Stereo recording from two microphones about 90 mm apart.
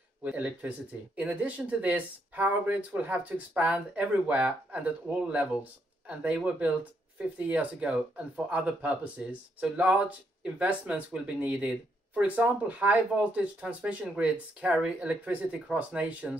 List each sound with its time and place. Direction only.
0.2 s speech: 15° right (ahead or behind)